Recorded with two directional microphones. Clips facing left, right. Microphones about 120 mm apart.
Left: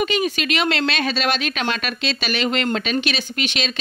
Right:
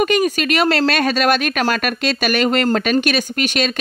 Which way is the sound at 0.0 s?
45° right (ahead or behind).